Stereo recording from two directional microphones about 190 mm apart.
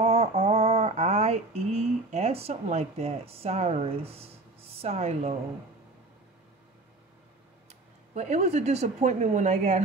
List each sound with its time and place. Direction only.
0.0 s a sound: 30° right (ahead or behind)
4.8 s speech: 35° right (ahead or behind)
8.1 s speech: 35° right (ahead or behind)